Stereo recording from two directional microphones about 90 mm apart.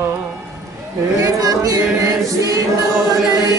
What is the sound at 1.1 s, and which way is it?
Speech, 45° right (ahead or behind).